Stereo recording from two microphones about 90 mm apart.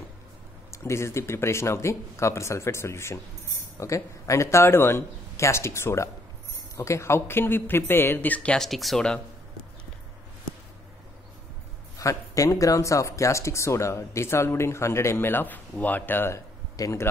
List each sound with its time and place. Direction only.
0.7 s speech: 35° left (ahead or behind); by 8.6 s 10° left (ahead or behind)
8.6 s speech: centre (ahead or behind)
12.0 s a man's voice: 35° left (ahead or behind)